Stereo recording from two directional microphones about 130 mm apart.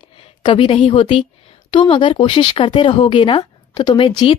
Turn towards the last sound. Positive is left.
turn(degrees=40)  # may be behind; listen again after turning